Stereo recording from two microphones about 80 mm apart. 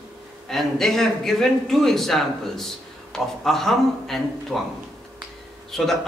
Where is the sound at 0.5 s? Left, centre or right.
Centre.